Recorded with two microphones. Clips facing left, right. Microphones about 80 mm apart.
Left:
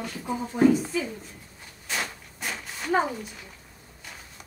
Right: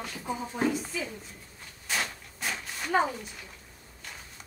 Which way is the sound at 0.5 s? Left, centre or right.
Centre.